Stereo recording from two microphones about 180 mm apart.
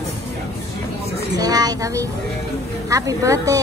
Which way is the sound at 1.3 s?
20° right (ahead or behind).